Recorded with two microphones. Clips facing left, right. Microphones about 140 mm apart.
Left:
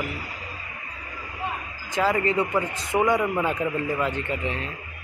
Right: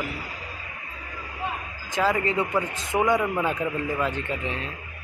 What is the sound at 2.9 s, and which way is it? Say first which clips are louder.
Speech: left 1 dB; centre (ahead or behind).